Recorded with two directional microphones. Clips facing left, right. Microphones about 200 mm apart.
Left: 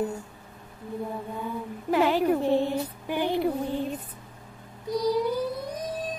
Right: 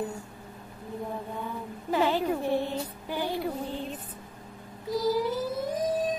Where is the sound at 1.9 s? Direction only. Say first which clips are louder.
Left 4 dB; 10° left (ahead or behind).